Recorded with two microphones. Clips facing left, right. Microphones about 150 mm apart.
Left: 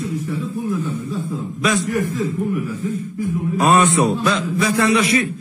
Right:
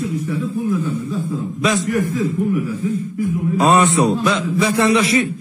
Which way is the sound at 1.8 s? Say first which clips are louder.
Right 2 dB; centre (ahead or behind).